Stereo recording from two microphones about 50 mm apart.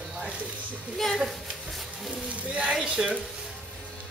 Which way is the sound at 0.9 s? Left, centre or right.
Centre.